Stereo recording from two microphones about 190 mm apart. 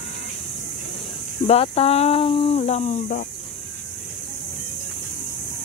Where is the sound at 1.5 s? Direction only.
30° left (ahead or behind).